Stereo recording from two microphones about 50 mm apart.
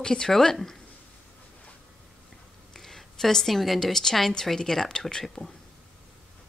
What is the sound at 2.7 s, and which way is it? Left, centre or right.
Speech, centre.